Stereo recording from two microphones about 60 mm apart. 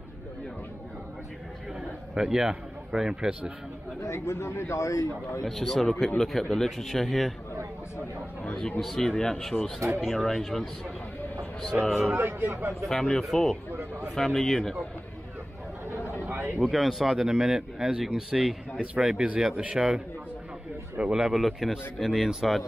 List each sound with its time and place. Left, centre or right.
2.1 s speech: centre
4.0 s a man's voice: left
5.4 s speech: centre
8.8 s a man's voice: centre
11.8 s speech: centre
12.2 s speech: right
12.8 s a man's voice: centre
16.3 s a sound: right
16.6 s speech: centre
17.2 s speech: centre
19.1 s speech: centre
21.0 s speech: centre
21.3 s speech: centre